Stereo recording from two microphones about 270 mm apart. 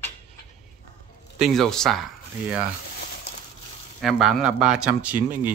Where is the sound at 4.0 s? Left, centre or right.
Centre.